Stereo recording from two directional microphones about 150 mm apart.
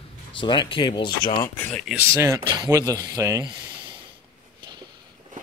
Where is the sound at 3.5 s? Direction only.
30° right (ahead or behind).